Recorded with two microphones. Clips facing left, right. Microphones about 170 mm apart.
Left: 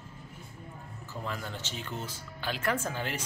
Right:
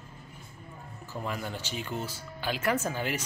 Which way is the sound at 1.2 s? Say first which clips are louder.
Right 3 dB; 15° right (ahead or behind).